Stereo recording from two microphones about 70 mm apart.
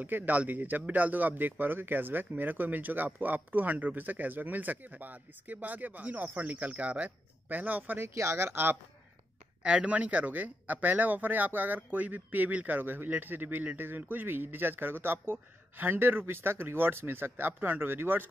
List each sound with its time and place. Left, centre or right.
0.0 s speech: right
8.0 s speech: right
9.6 s speech: centre; by 18.3 s right